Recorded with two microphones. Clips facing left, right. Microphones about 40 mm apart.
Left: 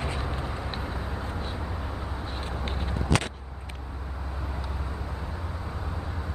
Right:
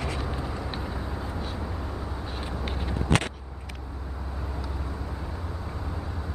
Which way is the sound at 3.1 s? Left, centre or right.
Right.